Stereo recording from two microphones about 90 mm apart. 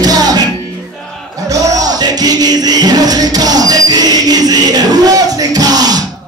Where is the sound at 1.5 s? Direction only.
45° right (ahead or behind).